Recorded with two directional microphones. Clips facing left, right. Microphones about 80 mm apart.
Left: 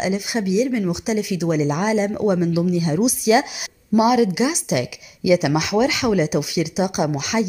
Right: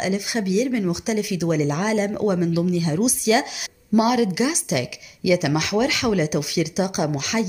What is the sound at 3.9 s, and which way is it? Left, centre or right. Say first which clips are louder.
Speech: left 2 dB; centre.